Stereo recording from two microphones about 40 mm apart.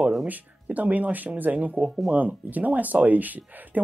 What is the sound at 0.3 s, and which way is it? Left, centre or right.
Speech, right.